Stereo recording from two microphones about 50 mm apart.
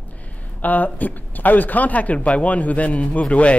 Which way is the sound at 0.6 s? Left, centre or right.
Left.